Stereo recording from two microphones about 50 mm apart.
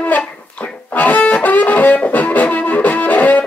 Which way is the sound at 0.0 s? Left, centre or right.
Left.